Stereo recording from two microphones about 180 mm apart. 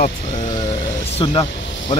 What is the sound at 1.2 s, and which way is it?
Speech, 30° left (ahead or behind).